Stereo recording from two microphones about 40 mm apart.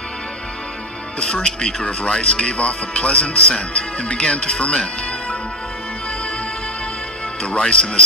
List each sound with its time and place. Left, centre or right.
1.2 s speech: left
7.4 s speech: left